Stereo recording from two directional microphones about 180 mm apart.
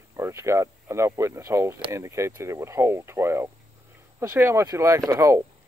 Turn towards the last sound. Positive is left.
turn(degrees=-15)  # may be behind; listen again after turning